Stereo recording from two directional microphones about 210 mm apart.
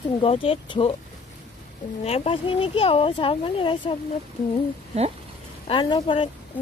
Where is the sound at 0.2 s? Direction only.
25° left (ahead or behind).